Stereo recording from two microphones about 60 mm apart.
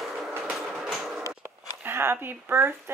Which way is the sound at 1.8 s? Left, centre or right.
Right.